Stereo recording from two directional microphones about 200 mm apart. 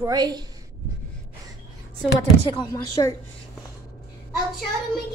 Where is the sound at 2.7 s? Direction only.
15° left (ahead or behind).